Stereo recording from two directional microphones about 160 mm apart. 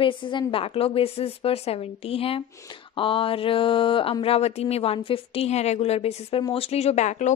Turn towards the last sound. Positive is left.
turn(degrees=45)  # may be behind; listen again after turning